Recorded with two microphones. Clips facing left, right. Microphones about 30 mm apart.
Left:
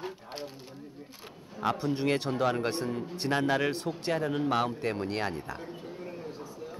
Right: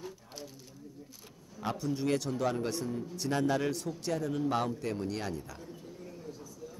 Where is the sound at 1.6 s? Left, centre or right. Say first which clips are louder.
Left 4 dB; left.